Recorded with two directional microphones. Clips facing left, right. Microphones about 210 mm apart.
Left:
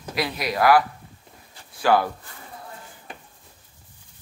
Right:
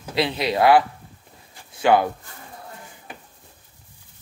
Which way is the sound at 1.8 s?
20° right (ahead or behind).